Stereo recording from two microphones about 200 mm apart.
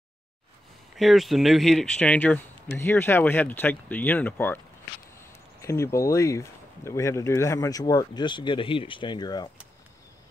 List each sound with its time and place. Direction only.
0.9 s speech: centre (ahead or behind)
5.6 s speech: 15° left (ahead or behind)